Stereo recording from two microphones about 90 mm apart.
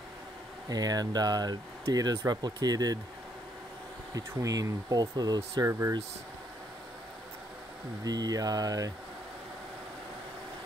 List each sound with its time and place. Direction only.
0.7 s speech: 45° right (ahead or behind)
4.1 s speech: 40° right (ahead or behind)
5.7 s speech: 30° right (ahead or behind)
8.0 s speech: 45° right (ahead or behind)